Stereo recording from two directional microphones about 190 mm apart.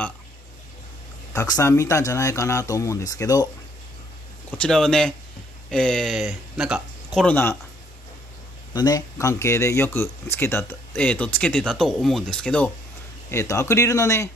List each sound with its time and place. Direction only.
1.3 s speech: 15° left (ahead or behind)
4.5 s speech: 5° left (ahead or behind)
8.7 s speech: 20° left (ahead or behind)